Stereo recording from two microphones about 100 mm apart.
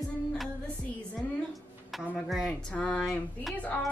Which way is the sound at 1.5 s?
Centre (ahead or behind).